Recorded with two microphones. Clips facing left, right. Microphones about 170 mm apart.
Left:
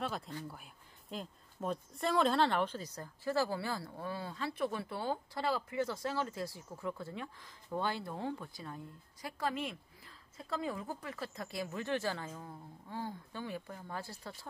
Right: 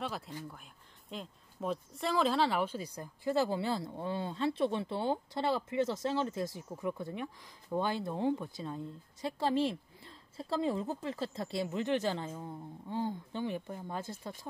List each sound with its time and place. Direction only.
1.1 s a woman's voice: centre (ahead or behind); by 14.5 s 20° right (ahead or behind)